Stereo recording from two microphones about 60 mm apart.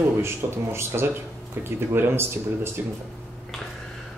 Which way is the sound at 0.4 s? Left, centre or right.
Right.